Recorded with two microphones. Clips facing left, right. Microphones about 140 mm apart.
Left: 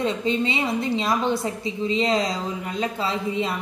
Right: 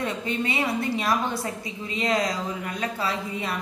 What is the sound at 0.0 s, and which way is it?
Speech, 20° left (ahead or behind).